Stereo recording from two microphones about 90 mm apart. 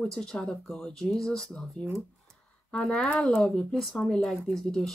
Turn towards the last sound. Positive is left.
turn(degrees=5)  # may be behind; listen again after turning